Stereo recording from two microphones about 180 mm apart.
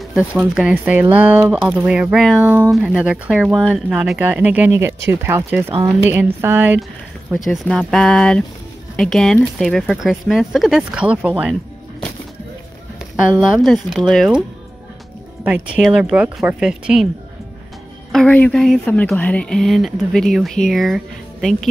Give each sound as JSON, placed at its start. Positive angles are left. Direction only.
{"t": 0.1, "sound": "speech", "side_deg": -5}
{"t": 6.8, "sound": "speech", "side_deg": 0}
{"t": 13.1, "sound": "speech", "side_deg": -5}
{"t": 15.7, "sound": "speech", "side_deg": -5}
{"t": 18.1, "sound": "speech", "side_deg": 5}